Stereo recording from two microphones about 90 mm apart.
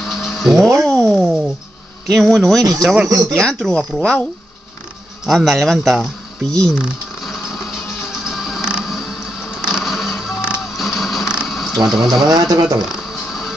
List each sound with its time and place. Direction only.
0.0 s a sound: centre (ahead or behind)
2.0 s speech: centre (ahead or behind)
3.1 s speech: 40° right (ahead or behind)
3.3 s speech: 5° left (ahead or behind)
5.2 s speech: 5° right (ahead or behind)
6.8 s a sound: centre (ahead or behind)
8.2 s music: 5° right (ahead or behind)
10.8 s a sound: centre (ahead or behind)
12.3 s speech: 45° right (ahead or behind)
12.8 s music: 5° right (ahead or behind)